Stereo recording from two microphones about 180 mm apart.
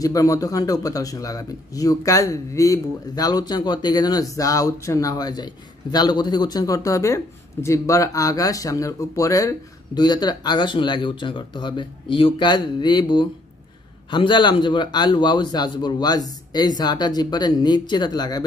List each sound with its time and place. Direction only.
0.0 s a man's voice: 20° left (ahead or behind)